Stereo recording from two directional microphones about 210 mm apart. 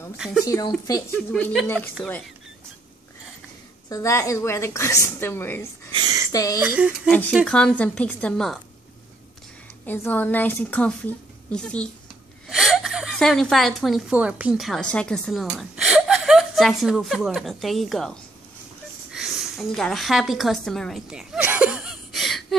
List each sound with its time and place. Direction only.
0.2 s a woman's voice: 5° right (ahead or behind)
0.8 s a woman's voice: 15° left (ahead or behind)
1.3 s a woman's voice: centre (ahead or behind)
3.9 s a woman's voice: 15° left (ahead or behind)
5.9 s a sound: 20° right (ahead or behind)
6.3 s a woman's voice: 15° left (ahead or behind)
9.8 s a woman's voice: 10° left (ahead or behind)
19.1 s a sound: centre (ahead or behind)